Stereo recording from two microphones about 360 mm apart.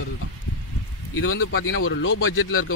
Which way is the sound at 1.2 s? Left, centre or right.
Left.